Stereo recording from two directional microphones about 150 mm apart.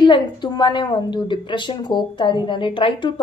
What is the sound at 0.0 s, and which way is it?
A woman's voice, 30° left (ahead or behind).